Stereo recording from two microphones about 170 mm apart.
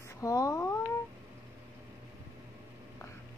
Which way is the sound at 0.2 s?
20° left (ahead or behind).